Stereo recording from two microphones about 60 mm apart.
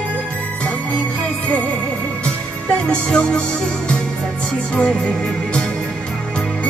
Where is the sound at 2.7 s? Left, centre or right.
Centre.